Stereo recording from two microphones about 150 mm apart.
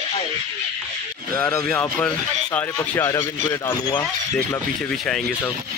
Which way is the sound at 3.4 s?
25° left (ahead or behind).